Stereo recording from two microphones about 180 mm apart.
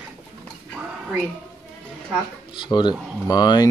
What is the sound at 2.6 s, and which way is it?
Speech, 25° left (ahead or behind).